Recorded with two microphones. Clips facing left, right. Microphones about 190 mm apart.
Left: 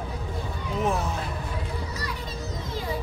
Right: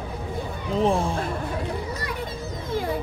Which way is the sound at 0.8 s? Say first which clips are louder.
Right 5 dB; 30° right (ahead or behind).